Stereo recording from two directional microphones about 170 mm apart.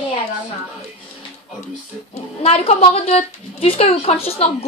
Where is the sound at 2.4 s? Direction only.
35° left (ahead or behind).